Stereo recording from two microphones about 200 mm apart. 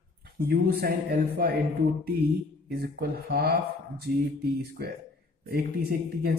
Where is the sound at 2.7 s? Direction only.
50° right (ahead or behind).